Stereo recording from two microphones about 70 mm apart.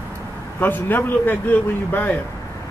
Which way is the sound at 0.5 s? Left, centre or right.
Left.